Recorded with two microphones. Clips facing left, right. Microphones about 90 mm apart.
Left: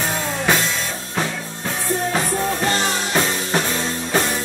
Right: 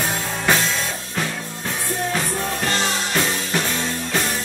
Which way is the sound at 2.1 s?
30° left (ahead or behind).